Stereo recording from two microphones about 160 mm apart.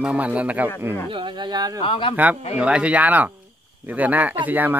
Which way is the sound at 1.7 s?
30° left (ahead or behind).